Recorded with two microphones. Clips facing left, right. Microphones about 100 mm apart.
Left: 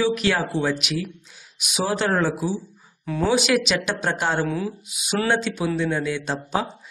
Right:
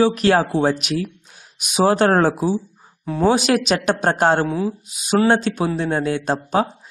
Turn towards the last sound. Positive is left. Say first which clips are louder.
# right 6 dB
turn(degrees=-45)  # may be behind; listen again after turning